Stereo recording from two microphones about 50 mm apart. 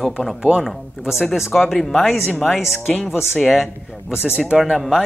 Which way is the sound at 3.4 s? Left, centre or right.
Centre.